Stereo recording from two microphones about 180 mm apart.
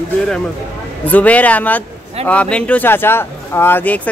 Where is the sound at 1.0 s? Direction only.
10° left (ahead or behind).